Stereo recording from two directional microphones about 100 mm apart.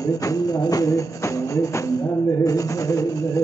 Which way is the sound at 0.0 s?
35° left (ahead or behind).